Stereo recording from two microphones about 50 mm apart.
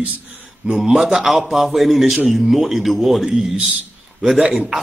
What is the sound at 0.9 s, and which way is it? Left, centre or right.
A man's voice, centre.